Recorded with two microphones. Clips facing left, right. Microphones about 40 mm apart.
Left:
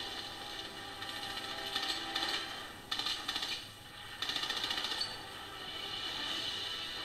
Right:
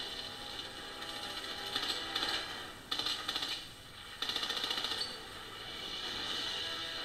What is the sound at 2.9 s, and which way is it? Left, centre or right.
Coin, centre.